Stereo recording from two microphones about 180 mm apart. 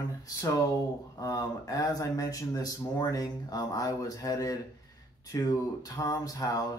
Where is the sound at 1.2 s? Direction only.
20° left (ahead or behind).